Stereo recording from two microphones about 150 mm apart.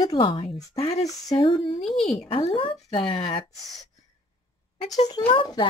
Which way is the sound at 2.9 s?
35° left (ahead or behind).